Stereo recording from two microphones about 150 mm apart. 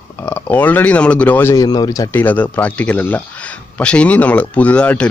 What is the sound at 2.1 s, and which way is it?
A man's voice, 10° left (ahead or behind).